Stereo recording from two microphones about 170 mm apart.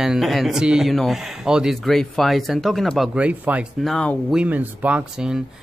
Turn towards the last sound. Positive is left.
turn(degrees=-5)  # may be behind; listen again after turning